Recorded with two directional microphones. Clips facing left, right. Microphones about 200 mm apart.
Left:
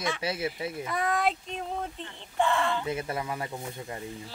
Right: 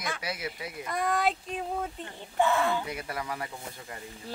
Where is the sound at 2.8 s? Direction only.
25° left (ahead or behind).